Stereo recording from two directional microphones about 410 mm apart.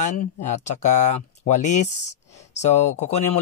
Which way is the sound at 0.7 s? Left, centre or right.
Centre.